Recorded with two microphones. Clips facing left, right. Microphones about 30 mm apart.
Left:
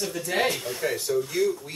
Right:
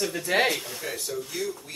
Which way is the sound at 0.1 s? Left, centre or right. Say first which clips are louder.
Right 1 dB; right.